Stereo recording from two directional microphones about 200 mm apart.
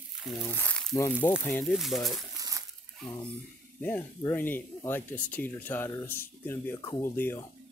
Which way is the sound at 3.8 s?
10° left (ahead or behind).